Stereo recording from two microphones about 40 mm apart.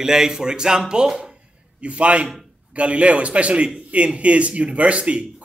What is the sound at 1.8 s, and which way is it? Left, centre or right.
A man's voice, right.